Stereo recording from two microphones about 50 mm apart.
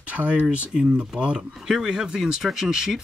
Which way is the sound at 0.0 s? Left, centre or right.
Right.